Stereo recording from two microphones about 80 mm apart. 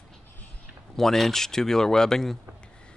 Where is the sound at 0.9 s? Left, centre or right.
Centre.